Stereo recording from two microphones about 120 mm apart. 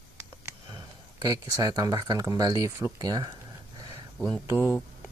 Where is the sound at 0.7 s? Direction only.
35° right (ahead or behind).